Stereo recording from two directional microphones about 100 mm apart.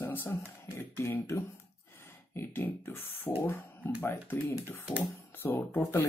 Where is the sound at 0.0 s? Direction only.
20° left (ahead or behind).